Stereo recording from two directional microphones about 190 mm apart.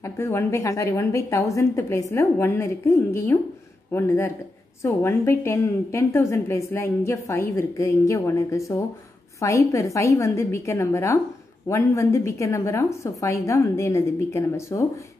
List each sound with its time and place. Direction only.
0.0 s a woman's voice: 15° left (ahead or behind)